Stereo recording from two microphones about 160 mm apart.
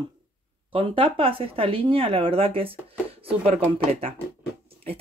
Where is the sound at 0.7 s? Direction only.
35° right (ahead or behind).